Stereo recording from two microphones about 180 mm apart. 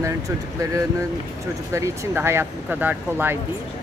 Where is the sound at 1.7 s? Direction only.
15° right (ahead or behind).